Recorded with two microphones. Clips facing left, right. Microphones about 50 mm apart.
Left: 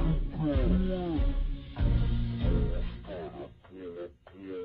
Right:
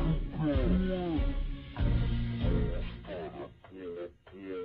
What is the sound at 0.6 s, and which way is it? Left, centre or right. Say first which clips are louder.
Music: left 1 dB; right.